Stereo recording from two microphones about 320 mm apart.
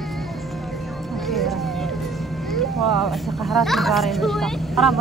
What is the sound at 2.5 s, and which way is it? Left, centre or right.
A child's voice, centre.